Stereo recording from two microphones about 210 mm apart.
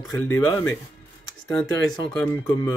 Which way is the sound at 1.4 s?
Centre (ahead or behind).